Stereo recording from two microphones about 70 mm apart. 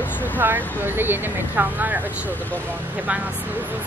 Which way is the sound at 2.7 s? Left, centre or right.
Right.